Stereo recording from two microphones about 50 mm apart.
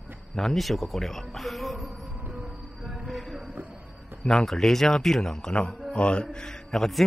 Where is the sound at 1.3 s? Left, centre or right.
Centre.